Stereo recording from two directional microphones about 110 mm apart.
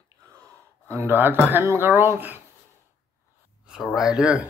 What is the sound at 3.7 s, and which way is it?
Speech, centre (ahead or behind).